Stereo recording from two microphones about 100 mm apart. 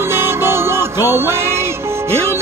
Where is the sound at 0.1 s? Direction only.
25° right (ahead or behind).